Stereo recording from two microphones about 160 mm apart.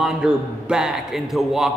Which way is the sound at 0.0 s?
5° right (ahead or behind).